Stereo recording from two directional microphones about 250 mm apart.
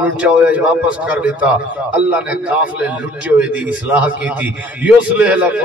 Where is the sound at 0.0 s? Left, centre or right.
Centre.